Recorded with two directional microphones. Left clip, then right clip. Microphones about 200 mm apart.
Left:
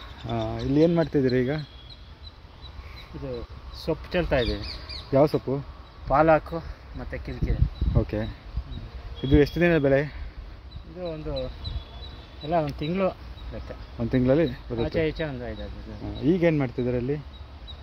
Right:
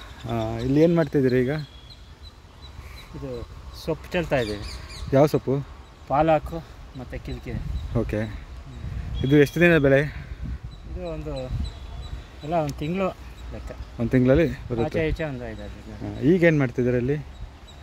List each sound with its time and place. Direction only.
0.4 s speech: 25° right (ahead or behind)
3.8 s speech: centre (ahead or behind)
5.1 s speech: 20° right (ahead or behind)
6.0 s speech: centre (ahead or behind)
7.9 s speech: 20° right (ahead or behind)
9.3 s speech: 25° right (ahead or behind)
11.0 s speech: centre (ahead or behind)
12.4 s speech: centre (ahead or behind)
13.9 s speech: 20° right (ahead or behind)
15.0 s speech: centre (ahead or behind)
16.1 s speech: 25° right (ahead or behind)